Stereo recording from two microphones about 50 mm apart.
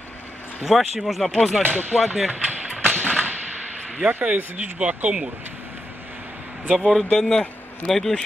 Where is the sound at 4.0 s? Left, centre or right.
Right.